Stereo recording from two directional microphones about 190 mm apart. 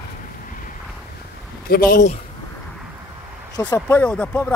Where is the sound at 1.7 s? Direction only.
50° left (ahead or behind).